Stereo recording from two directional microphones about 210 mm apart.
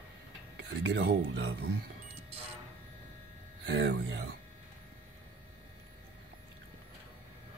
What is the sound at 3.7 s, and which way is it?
Speech, 55° right (ahead or behind).